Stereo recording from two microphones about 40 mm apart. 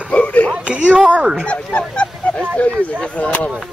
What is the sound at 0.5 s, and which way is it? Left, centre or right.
Speech, right.